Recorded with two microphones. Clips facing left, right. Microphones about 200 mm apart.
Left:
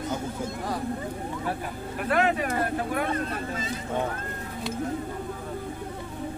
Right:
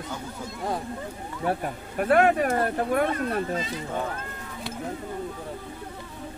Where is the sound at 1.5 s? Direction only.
50° right (ahead or behind).